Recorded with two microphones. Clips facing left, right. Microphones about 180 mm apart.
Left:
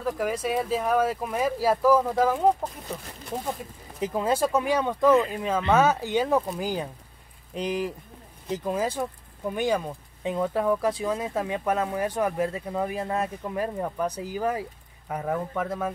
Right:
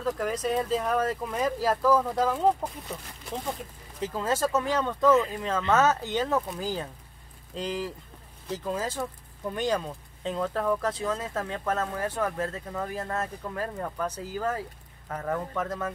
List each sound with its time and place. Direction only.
0.0 s speech: 10° left (ahead or behind)
4.0 s speech: 15° left (ahead or behind)